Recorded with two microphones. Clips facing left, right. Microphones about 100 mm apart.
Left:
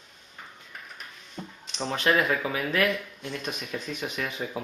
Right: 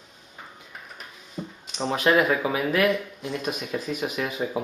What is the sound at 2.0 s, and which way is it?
Speech, 5° right (ahead or behind).